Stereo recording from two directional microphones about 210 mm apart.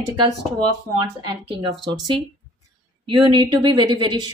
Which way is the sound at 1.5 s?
20° right (ahead or behind).